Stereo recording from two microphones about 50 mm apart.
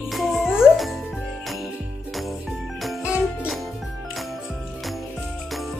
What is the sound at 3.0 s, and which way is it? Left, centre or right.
Music, right.